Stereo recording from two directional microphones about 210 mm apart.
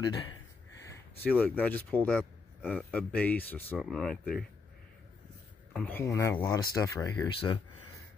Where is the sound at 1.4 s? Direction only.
10° left (ahead or behind).